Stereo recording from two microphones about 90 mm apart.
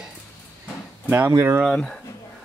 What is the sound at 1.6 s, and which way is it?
Speech, 5° left (ahead or behind).